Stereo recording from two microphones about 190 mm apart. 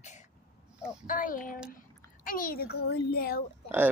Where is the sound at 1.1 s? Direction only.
45° left (ahead or behind).